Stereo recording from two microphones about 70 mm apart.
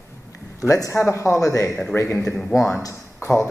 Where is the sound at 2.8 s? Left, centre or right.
Left.